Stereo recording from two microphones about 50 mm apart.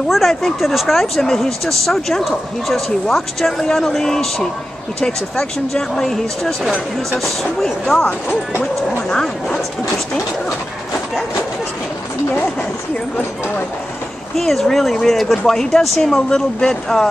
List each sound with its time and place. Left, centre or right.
0.1 s speech: centre
5.7 s speech: centre
14.3 s speech: centre